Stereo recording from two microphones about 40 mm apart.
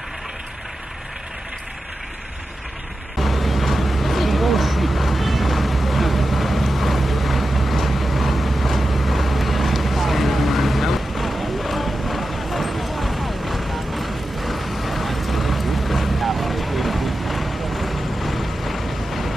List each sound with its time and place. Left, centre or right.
3.2 s vehicle: centre